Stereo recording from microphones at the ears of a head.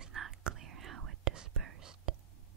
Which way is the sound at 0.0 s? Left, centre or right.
Right.